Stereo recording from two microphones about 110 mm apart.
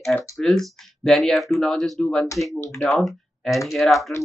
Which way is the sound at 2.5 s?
25° left (ahead or behind).